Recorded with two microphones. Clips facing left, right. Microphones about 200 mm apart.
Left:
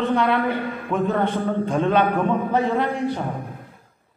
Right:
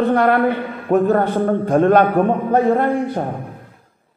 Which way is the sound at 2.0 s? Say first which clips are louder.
Right 5 dB; 45° right (ahead or behind).